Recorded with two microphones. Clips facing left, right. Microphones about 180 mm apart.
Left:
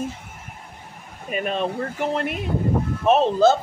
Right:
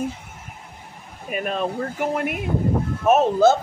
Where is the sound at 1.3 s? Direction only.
Centre (ahead or behind).